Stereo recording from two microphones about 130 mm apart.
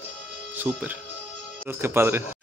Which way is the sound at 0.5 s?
15° right (ahead or behind).